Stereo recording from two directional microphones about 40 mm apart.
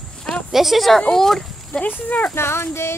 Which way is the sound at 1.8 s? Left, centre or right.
Left.